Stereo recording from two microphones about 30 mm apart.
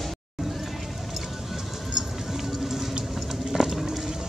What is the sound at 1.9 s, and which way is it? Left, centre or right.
Music, centre.